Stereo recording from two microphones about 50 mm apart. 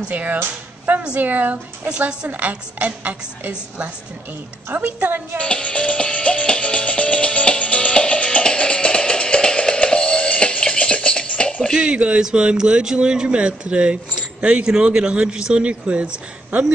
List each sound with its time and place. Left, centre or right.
0.1 s a woman's voice: right
1.9 s speech: centre
2.2 s a woman's voice: right
5.4 s music: left
11.7 s speech: centre